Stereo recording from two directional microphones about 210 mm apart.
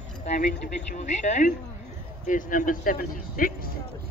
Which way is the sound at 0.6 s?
35° left (ahead or behind).